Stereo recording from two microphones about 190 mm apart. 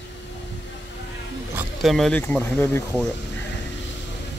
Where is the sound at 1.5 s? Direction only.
Centre (ahead or behind).